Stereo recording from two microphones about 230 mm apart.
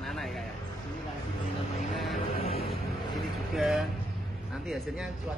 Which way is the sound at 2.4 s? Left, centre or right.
Left.